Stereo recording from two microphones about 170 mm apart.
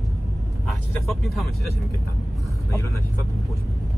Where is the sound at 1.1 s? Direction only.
Centre (ahead or behind).